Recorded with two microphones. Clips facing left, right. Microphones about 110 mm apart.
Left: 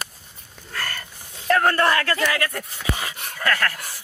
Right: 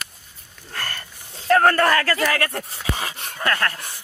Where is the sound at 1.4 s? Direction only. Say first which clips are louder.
Right 3 dB; 35° right (ahead or behind).